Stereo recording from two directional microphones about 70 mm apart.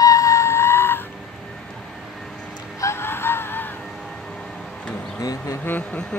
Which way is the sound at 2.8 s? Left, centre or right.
Left.